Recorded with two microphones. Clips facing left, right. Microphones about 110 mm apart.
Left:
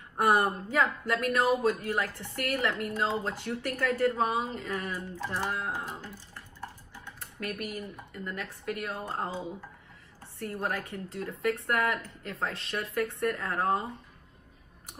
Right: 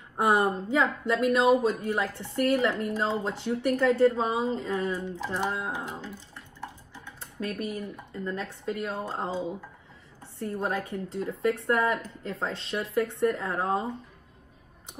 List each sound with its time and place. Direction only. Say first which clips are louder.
0.2 s speech: right 1 dB; 20° right (ahead or behind)